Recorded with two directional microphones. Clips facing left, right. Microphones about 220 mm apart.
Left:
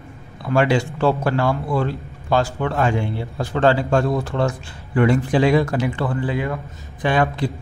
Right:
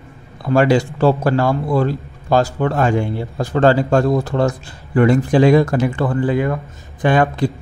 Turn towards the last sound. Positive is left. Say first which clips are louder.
# right 4 dB
turn(degrees=-50)  # may be behind; listen again after turning